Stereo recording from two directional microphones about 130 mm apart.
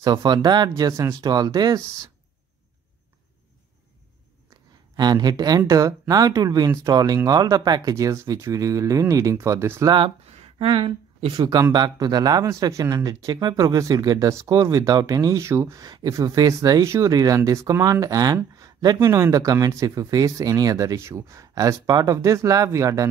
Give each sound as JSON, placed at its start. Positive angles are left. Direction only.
{"t": 0.0, "sound": "speech", "side_deg": -35}
{"t": 4.9, "sound": "speech", "side_deg": -30}
{"t": 9.8, "sound": "speech", "side_deg": -40}
{"t": 11.3, "sound": "speech", "side_deg": -30}